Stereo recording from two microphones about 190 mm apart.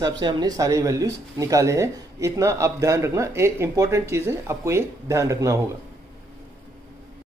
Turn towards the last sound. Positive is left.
turn(degrees=-15)  # may be behind; listen again after turning